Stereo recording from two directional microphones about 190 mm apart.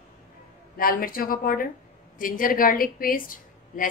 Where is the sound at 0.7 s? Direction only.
50° left (ahead or behind).